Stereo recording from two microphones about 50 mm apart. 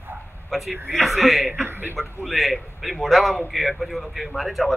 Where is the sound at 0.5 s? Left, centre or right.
Centre.